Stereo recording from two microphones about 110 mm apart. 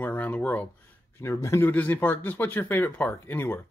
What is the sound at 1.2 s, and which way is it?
Speech, 30° left (ahead or behind).